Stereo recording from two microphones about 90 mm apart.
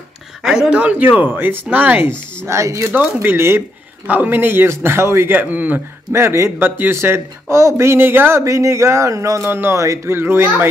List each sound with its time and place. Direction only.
0.4 s speech: 5° right (ahead or behind)
2.4 s speech: 35° right (ahead or behind)